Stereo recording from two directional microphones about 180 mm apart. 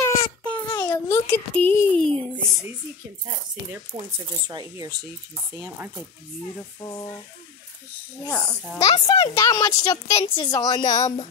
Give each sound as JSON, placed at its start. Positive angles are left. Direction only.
{"t": 0.0, "sound": "a sound", "side_deg": 15}
{"t": 3.9, "sound": "speech", "side_deg": -25}
{"t": 6.8, "sound": "a woman's voice", "side_deg": 20}
{"t": 8.3, "sound": "a child's voice", "side_deg": 5}
{"t": 8.8, "sound": "a woman's voice", "side_deg": 25}